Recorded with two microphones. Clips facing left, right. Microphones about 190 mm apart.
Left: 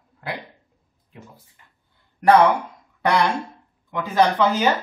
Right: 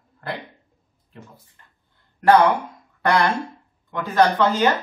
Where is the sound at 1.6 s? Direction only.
10° left (ahead or behind).